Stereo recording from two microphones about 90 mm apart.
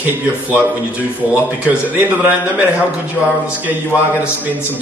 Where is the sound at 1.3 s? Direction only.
15° right (ahead or behind).